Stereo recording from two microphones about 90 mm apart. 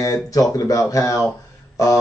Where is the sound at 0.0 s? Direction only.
40° left (ahead or behind).